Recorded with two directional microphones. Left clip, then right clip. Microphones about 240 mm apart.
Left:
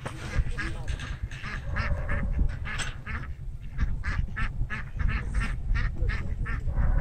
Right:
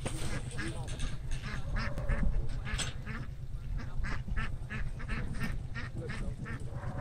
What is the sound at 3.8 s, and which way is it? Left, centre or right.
Duck, centre.